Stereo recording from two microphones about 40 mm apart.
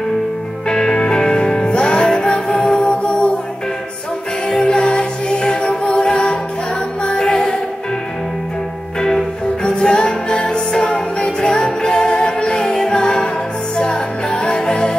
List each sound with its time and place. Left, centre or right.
0.7 s music: centre
4.6 s music: left
9.6 s music: left